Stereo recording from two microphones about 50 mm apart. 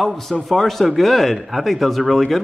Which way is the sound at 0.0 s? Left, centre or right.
Centre.